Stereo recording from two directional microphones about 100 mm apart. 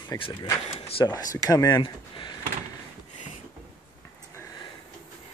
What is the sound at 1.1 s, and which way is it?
Speech, 35° left (ahead or behind).